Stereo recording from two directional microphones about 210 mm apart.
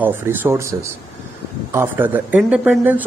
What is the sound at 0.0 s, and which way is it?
Speech, 10° right (ahead or behind).